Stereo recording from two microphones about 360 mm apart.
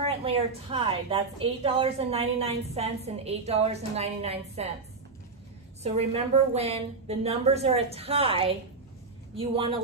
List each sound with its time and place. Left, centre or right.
0.0 s a woman's voice: centre
5.8 s a woman's voice: centre